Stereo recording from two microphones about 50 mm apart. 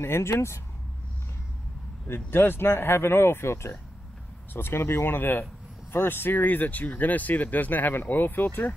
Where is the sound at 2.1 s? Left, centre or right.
Left.